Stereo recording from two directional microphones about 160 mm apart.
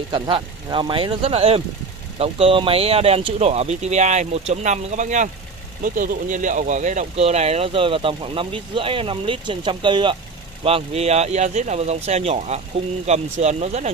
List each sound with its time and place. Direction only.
0.1 s speech: 30° right (ahead or behind)